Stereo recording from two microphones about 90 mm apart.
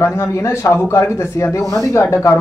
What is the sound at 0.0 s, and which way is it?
Speech, 30° left (ahead or behind).